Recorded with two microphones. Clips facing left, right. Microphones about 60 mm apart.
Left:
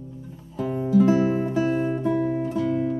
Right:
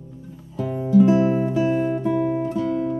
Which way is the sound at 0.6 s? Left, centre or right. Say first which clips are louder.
Right 3 dB; centre.